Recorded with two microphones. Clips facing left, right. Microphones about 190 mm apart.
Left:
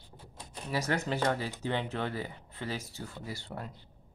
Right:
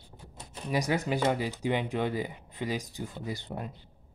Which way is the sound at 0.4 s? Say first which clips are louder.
Right 4 dB; 15° right (ahead or behind).